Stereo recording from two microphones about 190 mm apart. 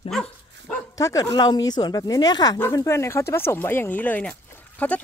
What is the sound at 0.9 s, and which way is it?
Speech, 15° left (ahead or behind).